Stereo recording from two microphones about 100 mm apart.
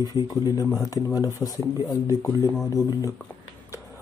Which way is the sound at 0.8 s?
35° left (ahead or behind).